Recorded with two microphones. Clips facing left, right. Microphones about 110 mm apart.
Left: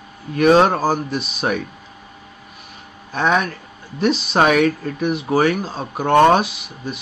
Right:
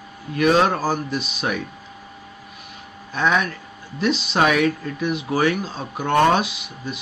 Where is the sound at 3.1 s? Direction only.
40° left (ahead or behind).